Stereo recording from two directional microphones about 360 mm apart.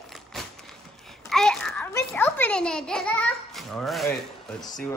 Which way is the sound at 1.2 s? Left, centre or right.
Centre.